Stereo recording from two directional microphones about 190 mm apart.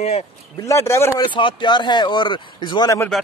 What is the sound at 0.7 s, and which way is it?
Speech, 15° left (ahead or behind).